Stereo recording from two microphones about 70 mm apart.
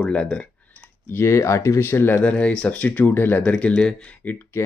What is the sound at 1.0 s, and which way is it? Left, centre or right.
Speech, left.